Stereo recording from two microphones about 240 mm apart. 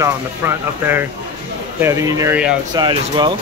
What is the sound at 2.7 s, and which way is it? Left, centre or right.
Speech, centre.